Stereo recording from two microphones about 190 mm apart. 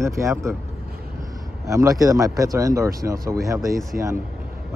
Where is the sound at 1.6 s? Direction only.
15° right (ahead or behind).